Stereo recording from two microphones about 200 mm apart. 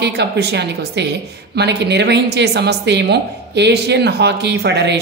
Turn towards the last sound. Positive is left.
turn(degrees=-60)  # may be behind; listen again after turning